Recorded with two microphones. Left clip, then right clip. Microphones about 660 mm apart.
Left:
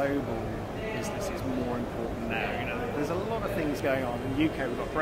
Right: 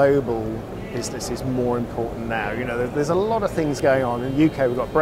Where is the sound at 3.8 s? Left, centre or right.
Right.